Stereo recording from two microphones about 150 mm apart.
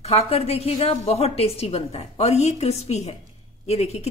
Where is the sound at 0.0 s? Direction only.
40° left (ahead or behind).